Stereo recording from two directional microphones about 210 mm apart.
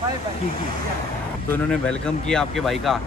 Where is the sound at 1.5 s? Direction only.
5° left (ahead or behind).